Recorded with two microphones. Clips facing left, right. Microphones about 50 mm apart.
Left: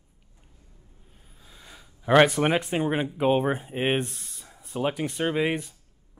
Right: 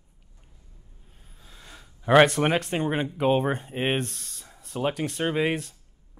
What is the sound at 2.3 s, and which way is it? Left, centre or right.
Speech, centre.